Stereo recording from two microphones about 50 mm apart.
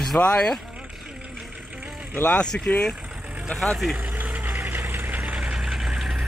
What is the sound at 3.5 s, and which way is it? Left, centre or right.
Speech, centre.